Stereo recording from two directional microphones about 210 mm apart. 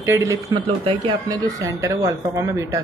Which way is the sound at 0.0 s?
15° right (ahead or behind).